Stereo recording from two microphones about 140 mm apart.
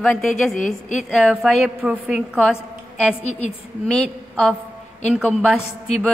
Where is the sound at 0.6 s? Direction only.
65° left (ahead or behind).